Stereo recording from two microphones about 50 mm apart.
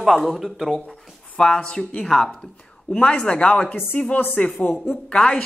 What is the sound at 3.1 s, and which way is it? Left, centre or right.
Speech, left.